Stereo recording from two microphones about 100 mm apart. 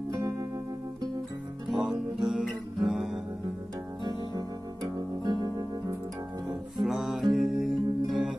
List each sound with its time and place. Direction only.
1.7 s music: 5° right (ahead or behind)
5.2 s music: 45° right (ahead or behind)
6.8 s music: 5° right (ahead or behind)